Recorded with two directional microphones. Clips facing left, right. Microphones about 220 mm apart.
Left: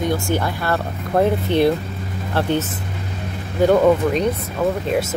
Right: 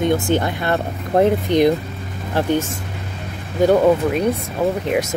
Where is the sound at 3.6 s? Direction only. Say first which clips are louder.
Even; 10° right (ahead or behind).